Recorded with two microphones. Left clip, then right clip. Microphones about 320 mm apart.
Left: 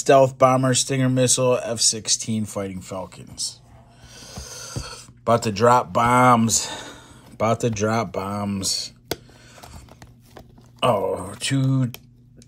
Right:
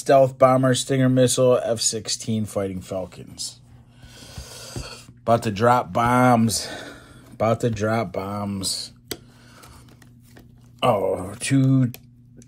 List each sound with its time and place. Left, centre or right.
0.0 s speech: centre
10.8 s speech: centre